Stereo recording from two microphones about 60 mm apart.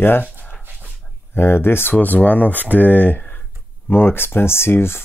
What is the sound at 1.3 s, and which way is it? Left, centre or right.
Speech, left.